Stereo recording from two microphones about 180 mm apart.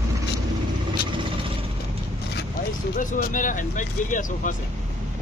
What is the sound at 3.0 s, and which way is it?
Speech, 45° left (ahead or behind).